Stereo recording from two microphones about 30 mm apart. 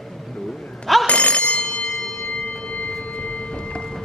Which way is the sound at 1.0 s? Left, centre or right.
Left.